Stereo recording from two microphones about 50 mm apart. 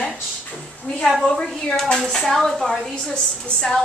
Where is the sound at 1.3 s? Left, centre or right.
Centre.